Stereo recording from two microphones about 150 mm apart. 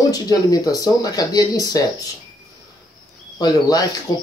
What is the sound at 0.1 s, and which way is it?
Speech, 25° left (ahead or behind).